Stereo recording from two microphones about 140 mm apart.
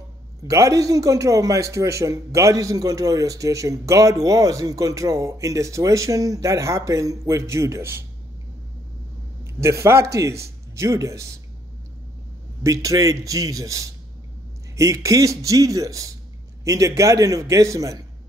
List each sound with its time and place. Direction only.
0.4 s a man's voice: 25° right (ahead or behind)
9.4 s a man's voice: 20° right (ahead or behind)
12.6 s a man's voice: 25° right (ahead or behind)